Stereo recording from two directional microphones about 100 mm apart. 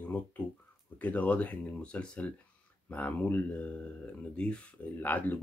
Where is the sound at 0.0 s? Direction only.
15° left (ahead or behind).